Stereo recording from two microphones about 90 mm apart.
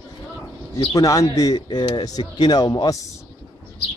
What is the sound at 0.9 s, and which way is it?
Speech, 40° left (ahead or behind).